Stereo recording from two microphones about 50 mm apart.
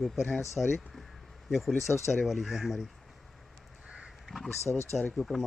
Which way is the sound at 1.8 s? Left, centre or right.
Left.